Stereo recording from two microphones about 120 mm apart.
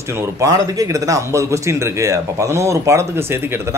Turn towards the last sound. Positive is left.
turn(degrees=-20)  # may be behind; listen again after turning